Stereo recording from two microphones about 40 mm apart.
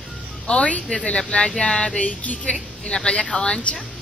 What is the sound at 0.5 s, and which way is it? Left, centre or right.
Speech, left.